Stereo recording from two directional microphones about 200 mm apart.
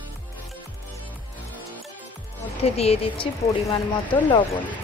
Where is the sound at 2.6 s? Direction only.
30° left (ahead or behind).